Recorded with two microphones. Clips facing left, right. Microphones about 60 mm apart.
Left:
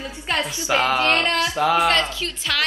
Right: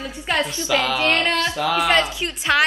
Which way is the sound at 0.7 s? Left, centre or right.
Left.